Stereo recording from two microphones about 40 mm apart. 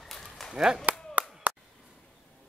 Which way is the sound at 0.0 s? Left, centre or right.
Centre.